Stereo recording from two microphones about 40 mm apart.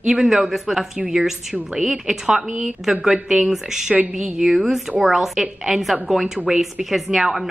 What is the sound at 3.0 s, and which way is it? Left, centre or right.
Speech, centre.